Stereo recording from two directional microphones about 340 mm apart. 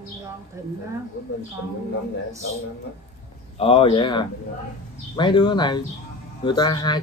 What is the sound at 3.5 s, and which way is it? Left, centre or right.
Speech, centre.